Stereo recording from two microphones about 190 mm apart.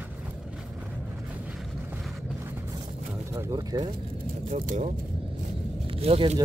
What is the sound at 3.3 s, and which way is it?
Speech, 15° right (ahead or behind).